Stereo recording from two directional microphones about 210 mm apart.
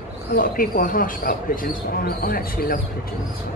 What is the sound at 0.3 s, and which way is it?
Speech, 45° left (ahead or behind).